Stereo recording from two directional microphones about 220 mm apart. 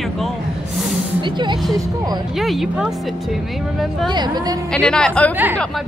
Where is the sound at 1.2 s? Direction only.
20° right (ahead or behind).